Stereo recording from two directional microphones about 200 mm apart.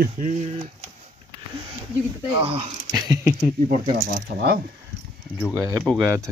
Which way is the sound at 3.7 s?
40° right (ahead or behind).